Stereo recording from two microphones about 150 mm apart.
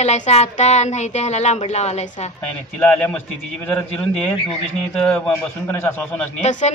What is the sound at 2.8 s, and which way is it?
A man's voice, 10° left (ahead or behind).